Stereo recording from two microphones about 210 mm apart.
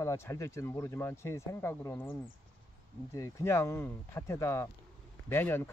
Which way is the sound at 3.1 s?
15° left (ahead or behind).